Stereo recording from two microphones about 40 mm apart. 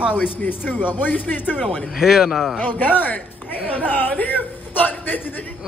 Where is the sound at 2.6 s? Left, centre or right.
Left.